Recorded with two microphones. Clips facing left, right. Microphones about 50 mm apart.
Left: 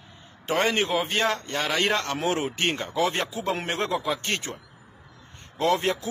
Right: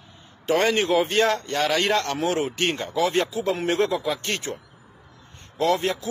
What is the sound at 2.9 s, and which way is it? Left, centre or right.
Speech, left.